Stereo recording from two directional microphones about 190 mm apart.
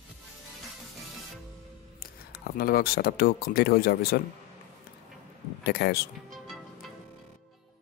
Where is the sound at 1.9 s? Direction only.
55° left (ahead or behind).